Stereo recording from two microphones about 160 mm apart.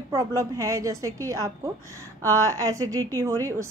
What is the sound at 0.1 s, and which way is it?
A woman's voice, 20° right (ahead or behind).